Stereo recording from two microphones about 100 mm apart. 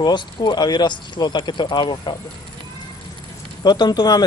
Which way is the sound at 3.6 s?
45° left (ahead or behind).